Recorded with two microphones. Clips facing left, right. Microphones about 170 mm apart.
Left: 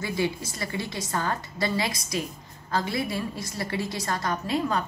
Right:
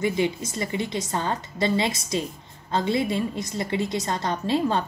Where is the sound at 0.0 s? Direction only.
20° right (ahead or behind).